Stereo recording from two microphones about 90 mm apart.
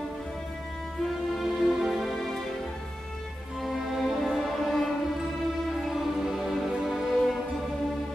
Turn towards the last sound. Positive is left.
turn(degrees=0)  # may be behind; listen again after turning